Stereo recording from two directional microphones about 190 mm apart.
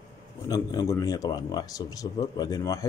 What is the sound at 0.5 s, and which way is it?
Speech, 20° left (ahead or behind).